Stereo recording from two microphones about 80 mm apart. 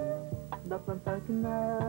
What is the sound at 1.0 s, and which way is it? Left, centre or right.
Music, centre.